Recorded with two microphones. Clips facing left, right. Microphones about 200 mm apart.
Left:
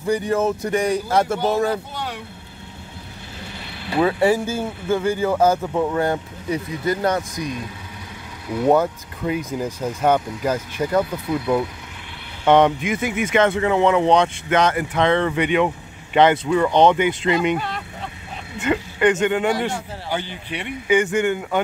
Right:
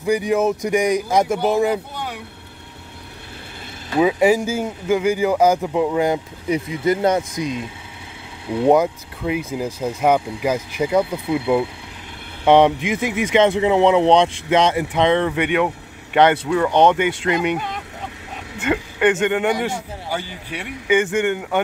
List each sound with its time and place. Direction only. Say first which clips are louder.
0.0 s speech: right 2 dB; 10° right (ahead or behind)
4.0 s speech: right 2 dB; 15° right (ahead or behind)
8.6 s speech: right 2 dB; 10° right (ahead or behind)
12.8 s speech: right 1 dB; 25° right (ahead or behind)
15.1 s speech: even; 5° right (ahead or behind)